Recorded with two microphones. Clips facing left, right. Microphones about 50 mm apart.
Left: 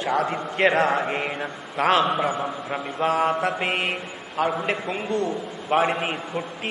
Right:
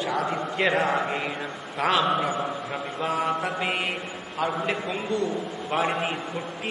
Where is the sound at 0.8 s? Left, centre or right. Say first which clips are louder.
Left 2 dB; left.